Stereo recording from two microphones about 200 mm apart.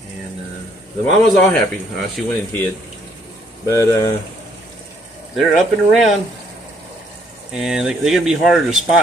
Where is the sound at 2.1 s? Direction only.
10° left (ahead or behind).